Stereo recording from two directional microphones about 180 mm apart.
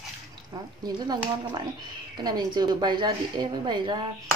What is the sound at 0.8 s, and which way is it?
A woman's voice, 20° right (ahead or behind).